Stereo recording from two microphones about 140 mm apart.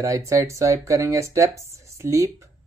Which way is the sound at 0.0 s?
20° right (ahead or behind).